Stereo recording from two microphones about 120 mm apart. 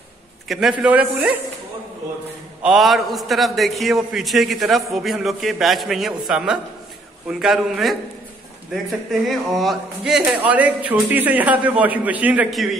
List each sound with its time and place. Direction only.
0.5 s a man's voice: 5° right (ahead or behind)
2.6 s a man's voice: centre (ahead or behind)